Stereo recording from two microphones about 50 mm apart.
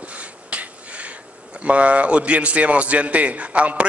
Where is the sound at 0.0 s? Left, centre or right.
Right.